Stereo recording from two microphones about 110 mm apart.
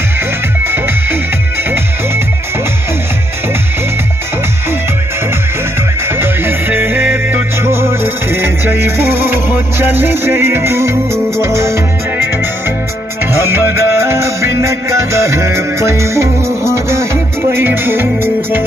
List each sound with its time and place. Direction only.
1.6 s music: 20° right (ahead or behind)
6.0 s music: 20° right (ahead or behind)
13.4 s music: 20° right (ahead or behind)